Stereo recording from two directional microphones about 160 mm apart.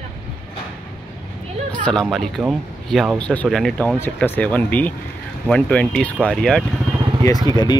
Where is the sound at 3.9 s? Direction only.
15° left (ahead or behind).